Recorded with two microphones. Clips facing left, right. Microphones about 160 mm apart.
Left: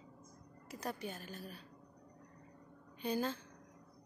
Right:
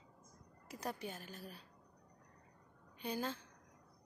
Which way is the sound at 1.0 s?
15° right (ahead or behind).